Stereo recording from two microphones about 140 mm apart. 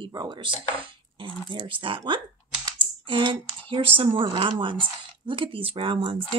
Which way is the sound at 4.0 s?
40° right (ahead or behind).